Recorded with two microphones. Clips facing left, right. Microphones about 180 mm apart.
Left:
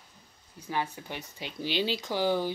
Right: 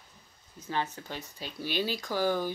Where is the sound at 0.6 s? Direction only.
10° left (ahead or behind).